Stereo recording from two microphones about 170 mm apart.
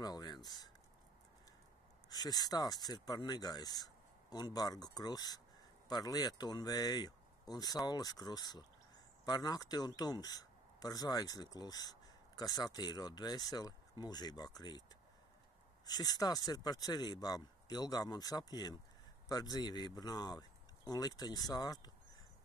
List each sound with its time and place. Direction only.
0.0 s speech: 25° left (ahead or behind)
2.0 s speech: 25° left (ahead or behind)
15.8 s speech: 20° left (ahead or behind)